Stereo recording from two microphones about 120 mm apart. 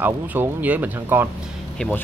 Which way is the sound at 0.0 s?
15° right (ahead or behind).